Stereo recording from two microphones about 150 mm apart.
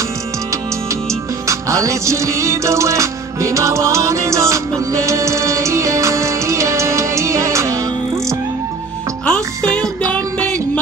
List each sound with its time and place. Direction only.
1.5 s music: 20° right (ahead or behind)
9.2 s music: 5° left (ahead or behind)